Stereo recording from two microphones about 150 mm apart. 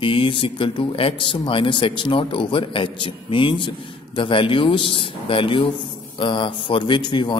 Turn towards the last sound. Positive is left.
turn(degrees=30)  # may be behind; listen again after turning